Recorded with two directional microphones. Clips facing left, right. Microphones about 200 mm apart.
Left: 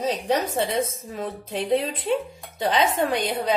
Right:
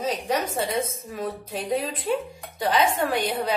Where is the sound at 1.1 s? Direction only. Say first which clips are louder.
Even; 25° left (ahead or behind).